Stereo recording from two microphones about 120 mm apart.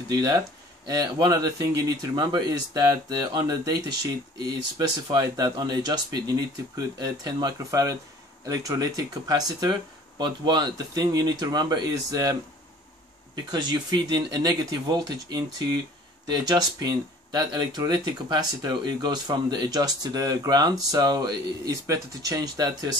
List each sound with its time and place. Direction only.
0.1 s speech: 30° right (ahead or behind)
4.7 s speech: 35° right (ahead or behind)
13.5 s speech: 35° right (ahead or behind)